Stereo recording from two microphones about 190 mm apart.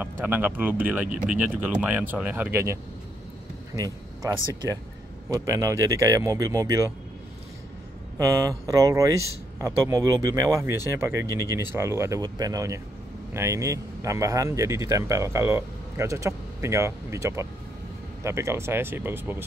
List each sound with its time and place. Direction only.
0.0 s speech: 10° right (ahead or behind)
8.2 s speech: 15° right (ahead or behind)